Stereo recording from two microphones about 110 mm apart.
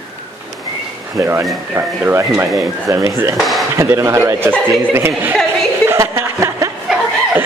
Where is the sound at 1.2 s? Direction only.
25° right (ahead or behind).